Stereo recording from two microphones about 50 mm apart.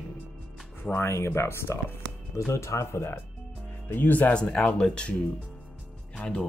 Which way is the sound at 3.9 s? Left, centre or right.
Left.